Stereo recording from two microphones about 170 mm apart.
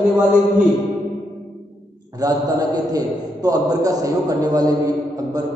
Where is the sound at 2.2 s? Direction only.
20° right (ahead or behind).